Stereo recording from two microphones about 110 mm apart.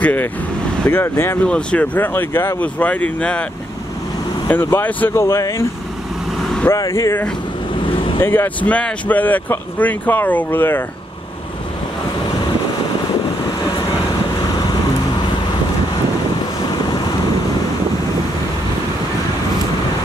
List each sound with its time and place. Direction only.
0.0 s speech: 15° left (ahead or behind)
1.4 s speech: 10° left (ahead or behind)
4.5 s speech: 20° left (ahead or behind)
6.3 s vehicle: centre (ahead or behind)
6.7 s speech: 25° left (ahead or behind)
7.9 s vehicle: 55° left (ahead or behind)
8.2 s speech: 20° left (ahead or behind)